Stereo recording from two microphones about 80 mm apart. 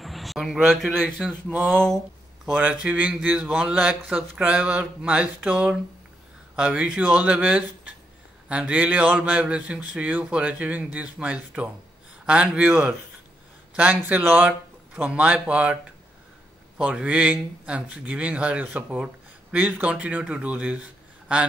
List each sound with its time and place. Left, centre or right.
0.0 s a man's voice: centre
1.2 s speech: centre
1.7 s speech: centre
2.5 s speech: centre